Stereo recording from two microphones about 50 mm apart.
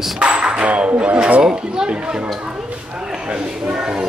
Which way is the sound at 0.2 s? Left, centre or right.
Right.